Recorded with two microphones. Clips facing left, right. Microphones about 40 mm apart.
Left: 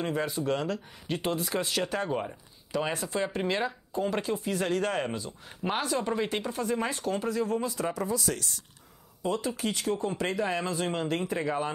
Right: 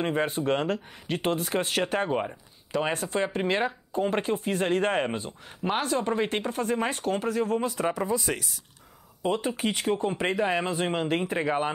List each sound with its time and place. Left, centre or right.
0.0 s speech: right
2.0 s speech: right
2.7 s speech: right
8.0 s speech: right